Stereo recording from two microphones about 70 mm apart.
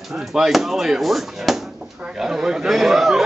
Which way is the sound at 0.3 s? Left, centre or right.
Centre.